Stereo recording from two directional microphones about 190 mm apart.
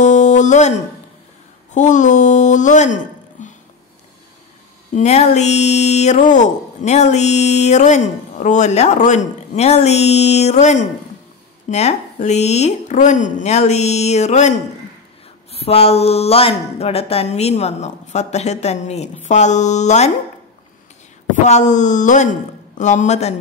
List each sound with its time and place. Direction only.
0.0 s a sound: 40° left (ahead or behind)
1.7 s speech: 40° left (ahead or behind)
4.9 s speech: 35° left (ahead or behind)
21.5 s speech: 40° left (ahead or behind)